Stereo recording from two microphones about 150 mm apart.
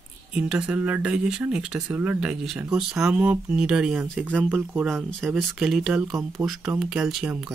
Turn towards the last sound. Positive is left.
turn(degrees=-5)  # may be behind; listen again after turning